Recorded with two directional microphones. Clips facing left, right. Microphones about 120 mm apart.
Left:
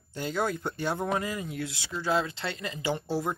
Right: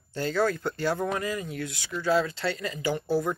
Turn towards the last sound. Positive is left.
turn(degrees=25)  # may be behind; listen again after turning